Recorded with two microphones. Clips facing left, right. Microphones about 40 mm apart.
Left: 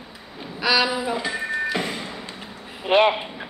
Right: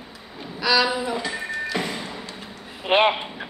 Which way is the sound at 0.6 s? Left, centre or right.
Centre.